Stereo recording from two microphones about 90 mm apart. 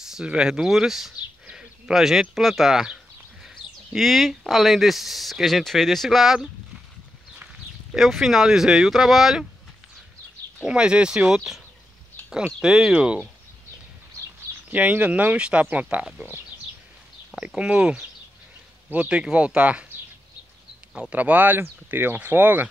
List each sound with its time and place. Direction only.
0.0 s speech: 10° right (ahead or behind)
7.9 s speech: 5° right (ahead or behind)
10.6 s speech: 10° right (ahead or behind)
14.7 s speech: 15° right (ahead or behind)
17.6 s speech: 10° right (ahead or behind)
20.9 s speech: 15° right (ahead or behind)